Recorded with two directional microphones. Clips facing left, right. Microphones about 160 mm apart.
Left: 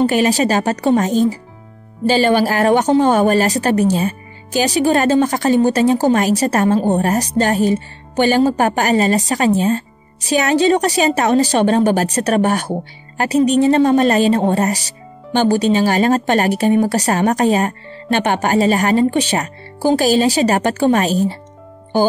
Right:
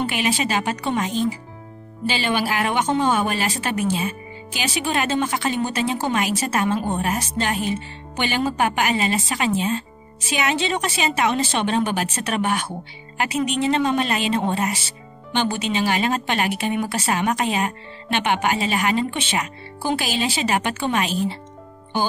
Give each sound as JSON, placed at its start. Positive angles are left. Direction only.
{"t": 0.0, "sound": "speech", "side_deg": 40}